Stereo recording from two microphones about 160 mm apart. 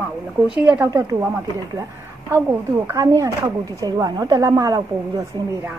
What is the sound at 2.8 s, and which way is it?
A woman's voice, 20° right (ahead or behind).